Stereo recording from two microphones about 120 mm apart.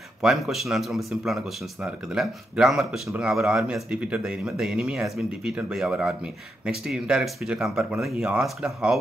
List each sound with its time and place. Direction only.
0.2 s speech: centre (ahead or behind)